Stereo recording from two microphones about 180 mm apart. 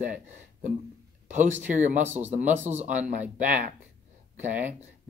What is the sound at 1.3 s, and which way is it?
Speech, 45° right (ahead or behind).